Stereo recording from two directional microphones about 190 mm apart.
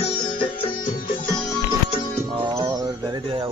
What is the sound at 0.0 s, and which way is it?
Sitar, 30° left (ahead or behind).